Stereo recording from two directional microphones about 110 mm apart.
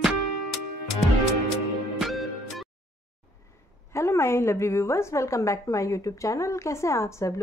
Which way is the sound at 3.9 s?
25° left (ahead or behind).